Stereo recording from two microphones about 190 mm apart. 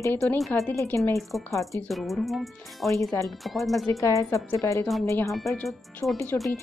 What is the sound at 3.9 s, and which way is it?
Speech, 15° left (ahead or behind).